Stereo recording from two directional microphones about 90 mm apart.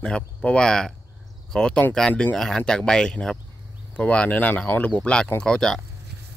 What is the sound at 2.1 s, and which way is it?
Speech, 20° left (ahead or behind).